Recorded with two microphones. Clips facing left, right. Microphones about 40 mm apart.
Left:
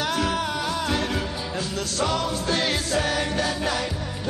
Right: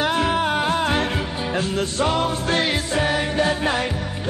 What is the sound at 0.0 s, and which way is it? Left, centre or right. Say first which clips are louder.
Music: right 5 dB; right.